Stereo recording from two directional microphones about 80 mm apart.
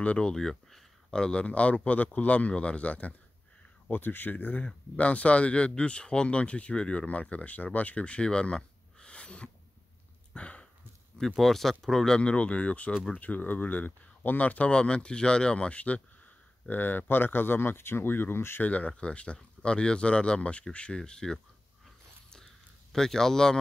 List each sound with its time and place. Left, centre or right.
0.0 s speech: centre
10.3 s a sound: centre
11.1 s speech: centre
22.9 s speech: centre